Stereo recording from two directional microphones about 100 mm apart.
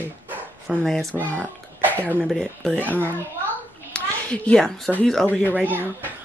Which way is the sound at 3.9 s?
10° left (ahead or behind).